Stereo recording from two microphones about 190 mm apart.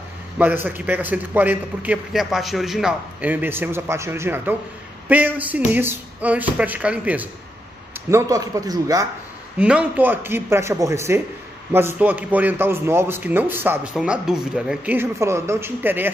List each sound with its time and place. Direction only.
0.4 s a man's voice: 10° right (ahead or behind)
9.6 s a man's voice: 5° right (ahead or behind)